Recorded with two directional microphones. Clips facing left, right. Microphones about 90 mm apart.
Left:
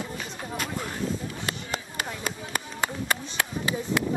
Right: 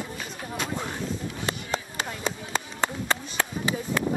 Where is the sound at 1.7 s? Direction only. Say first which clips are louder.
Right 2 dB; 5° left (ahead or behind).